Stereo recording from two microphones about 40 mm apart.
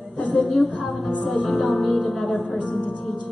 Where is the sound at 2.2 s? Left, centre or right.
Centre.